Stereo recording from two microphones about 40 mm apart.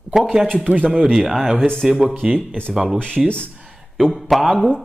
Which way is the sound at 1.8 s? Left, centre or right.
Centre.